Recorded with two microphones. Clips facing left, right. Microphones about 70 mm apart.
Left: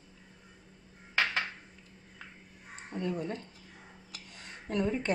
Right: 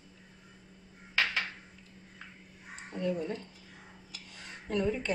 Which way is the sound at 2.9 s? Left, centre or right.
Centre.